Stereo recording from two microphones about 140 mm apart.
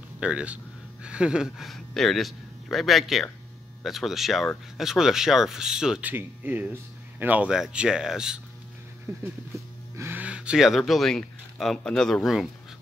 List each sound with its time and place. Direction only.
0.2 s speech: 10° right (ahead or behind)
9.1 s speech: 20° right (ahead or behind); by 12.4 s centre (ahead or behind)